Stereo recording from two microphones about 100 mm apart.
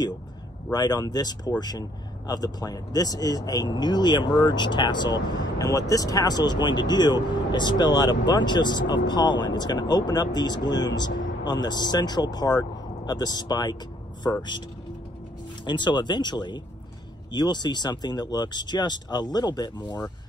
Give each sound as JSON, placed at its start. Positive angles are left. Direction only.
{"t": 0.7, "sound": "speech", "side_deg": 40}
{"t": 15.6, "sound": "speech", "side_deg": 50}